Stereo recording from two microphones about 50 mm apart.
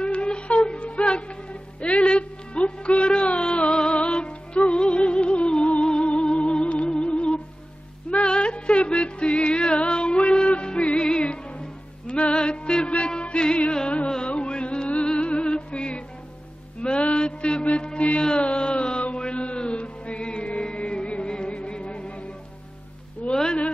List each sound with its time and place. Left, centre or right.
0.0 s music: centre
17.6 s chant: left
19.8 s music: left
23.3 s a sound: centre